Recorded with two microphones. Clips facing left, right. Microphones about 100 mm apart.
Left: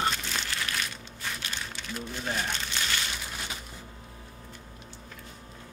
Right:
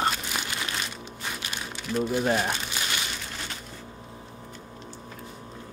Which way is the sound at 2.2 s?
60° right (ahead or behind).